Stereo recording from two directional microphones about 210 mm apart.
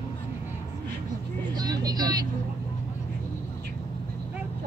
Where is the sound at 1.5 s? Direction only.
20° right (ahead or behind).